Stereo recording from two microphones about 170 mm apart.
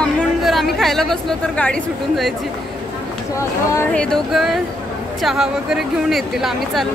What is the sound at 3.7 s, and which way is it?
Speech, 10° left (ahead or behind).